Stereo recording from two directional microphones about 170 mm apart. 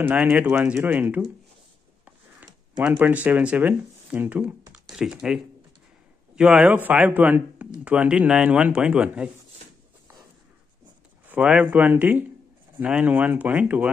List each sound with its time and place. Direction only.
0.0 s speech: 10° right (ahead or behind)
2.8 s speech: 10° right (ahead or behind)
11.2 s speech: 5° right (ahead or behind)